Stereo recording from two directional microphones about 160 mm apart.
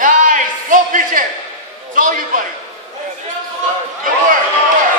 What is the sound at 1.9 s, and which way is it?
Speech, 55° right (ahead or behind).